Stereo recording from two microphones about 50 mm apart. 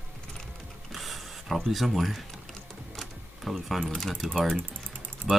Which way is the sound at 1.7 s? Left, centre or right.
Centre.